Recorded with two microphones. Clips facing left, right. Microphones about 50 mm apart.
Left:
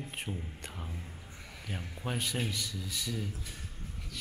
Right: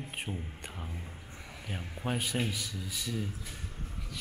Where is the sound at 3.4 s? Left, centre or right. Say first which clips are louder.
Right 2 dB; centre.